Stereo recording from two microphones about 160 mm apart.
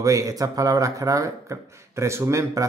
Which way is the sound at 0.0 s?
20° right (ahead or behind).